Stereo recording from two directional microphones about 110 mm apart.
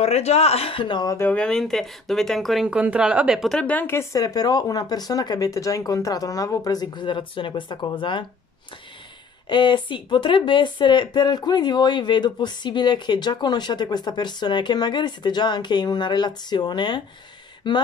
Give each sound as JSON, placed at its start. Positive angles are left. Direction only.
{"t": 0.0, "sound": "speech", "side_deg": 70}
{"t": 1.3, "sound": "speech", "side_deg": 5}
{"t": 3.5, "sound": "speech", "side_deg": 15}
{"t": 9.5, "sound": "speech", "side_deg": 45}